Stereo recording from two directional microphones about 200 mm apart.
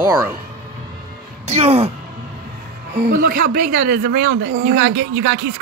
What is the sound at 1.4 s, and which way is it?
Speech, 30° right (ahead or behind).